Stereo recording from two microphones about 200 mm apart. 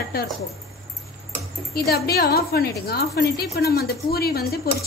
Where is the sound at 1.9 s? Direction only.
50° left (ahead or behind).